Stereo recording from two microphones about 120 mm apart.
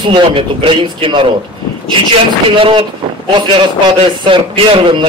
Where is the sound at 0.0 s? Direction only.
45° right (ahead or behind).